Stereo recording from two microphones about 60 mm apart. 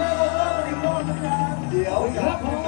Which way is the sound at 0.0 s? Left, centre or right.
Centre.